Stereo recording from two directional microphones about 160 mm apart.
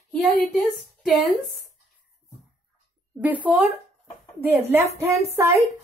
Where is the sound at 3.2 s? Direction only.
10° right (ahead or behind).